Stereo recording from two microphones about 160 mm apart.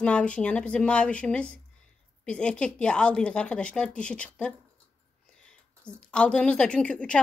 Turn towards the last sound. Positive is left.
turn(degrees=5)  # may be behind; listen again after turning